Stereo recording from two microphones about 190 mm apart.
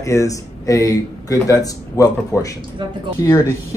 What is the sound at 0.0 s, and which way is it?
Speech, 15° left (ahead or behind).